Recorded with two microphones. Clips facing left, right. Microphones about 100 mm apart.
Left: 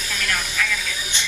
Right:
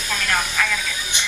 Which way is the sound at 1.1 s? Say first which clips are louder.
Right 2 dB; 15° right (ahead or behind).